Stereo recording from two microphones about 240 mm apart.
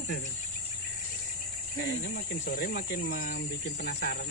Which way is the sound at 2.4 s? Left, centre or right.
Left.